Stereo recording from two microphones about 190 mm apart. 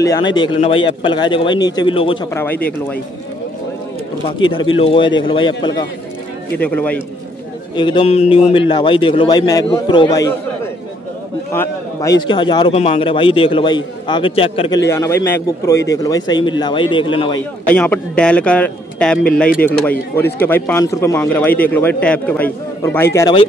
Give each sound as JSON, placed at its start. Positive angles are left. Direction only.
{"t": 0.0, "sound": "a man's voice", "side_deg": 20}
{"t": 2.3, "sound": "speech", "side_deg": 10}
{"t": 4.3, "sound": "a man's voice", "side_deg": 25}
{"t": 6.6, "sound": "speech", "side_deg": 5}
{"t": 7.7, "sound": "a man's voice", "side_deg": 25}
{"t": 11.5, "sound": "a man's voice", "side_deg": 15}
{"t": 14.9, "sound": "a man's voice", "side_deg": 15}
{"t": 17.6, "sound": "a man's voice", "side_deg": 10}